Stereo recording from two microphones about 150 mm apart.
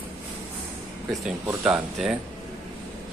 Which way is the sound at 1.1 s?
5° right (ahead or behind).